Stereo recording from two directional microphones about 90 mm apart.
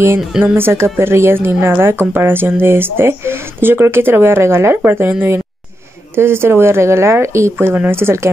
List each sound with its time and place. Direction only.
0.4 s a woman's voice: 25° right (ahead or behind)
6.1 s a woman's voice: 25° right (ahead or behind)